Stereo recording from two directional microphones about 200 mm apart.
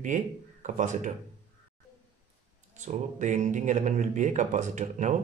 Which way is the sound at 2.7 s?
35° right (ahead or behind).